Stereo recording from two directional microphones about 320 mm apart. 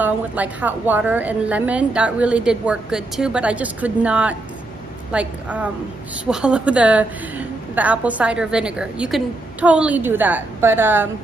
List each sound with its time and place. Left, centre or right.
0.0 s a woman's voice: centre